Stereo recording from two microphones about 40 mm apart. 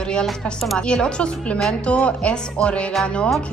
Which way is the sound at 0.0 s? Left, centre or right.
Left.